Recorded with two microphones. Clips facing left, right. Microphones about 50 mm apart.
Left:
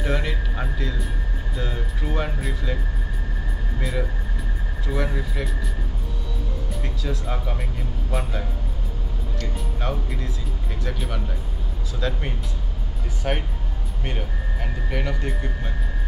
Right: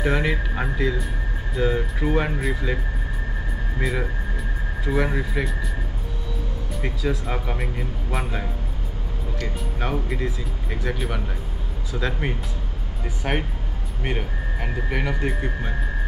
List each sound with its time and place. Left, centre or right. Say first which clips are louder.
0.0 s speech: right 4 dB; centre
4.8 s speech: right 4 dB; centre
5.4 s speech: right 3 dB; centre
7.0 s speech: right 4 dB; centre
9.4 s speech: right 2 dB; centre